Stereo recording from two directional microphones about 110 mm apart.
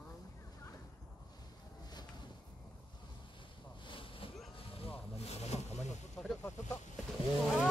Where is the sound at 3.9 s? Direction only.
55° left (ahead or behind).